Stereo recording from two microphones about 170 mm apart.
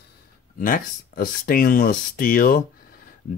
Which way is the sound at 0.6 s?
55° left (ahead or behind).